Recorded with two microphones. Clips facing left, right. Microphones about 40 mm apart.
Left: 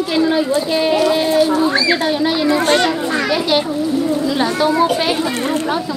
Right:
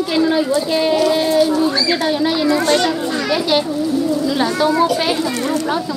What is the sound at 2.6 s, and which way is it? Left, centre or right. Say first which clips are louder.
Speech: left 1 dB; left.